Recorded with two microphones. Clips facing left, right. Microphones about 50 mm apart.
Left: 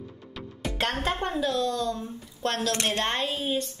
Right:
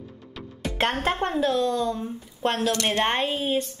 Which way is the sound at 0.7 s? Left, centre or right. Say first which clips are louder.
Right 4 dB; centre.